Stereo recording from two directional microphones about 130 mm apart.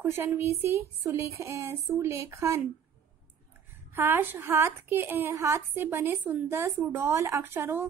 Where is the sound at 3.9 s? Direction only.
15° right (ahead or behind).